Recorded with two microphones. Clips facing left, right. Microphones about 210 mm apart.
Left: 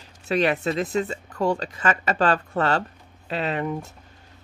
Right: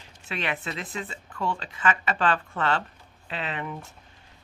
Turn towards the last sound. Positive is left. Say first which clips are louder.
# left 7 dB
turn(degrees=40)  # may be behind; listen again after turning